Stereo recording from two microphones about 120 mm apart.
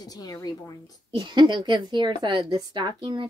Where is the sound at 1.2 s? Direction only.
40° right (ahead or behind).